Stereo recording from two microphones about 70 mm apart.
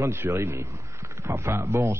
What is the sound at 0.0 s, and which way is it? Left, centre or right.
A man's voice, right.